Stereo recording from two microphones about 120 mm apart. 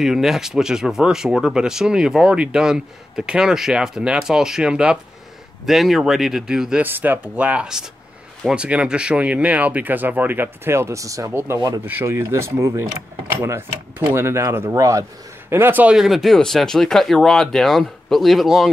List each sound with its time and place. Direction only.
0.0 s speech: centre (ahead or behind)
6.8 s speech: 15° right (ahead or behind)
11.8 s speech: 15° right (ahead or behind); by 18.7 s centre (ahead or behind)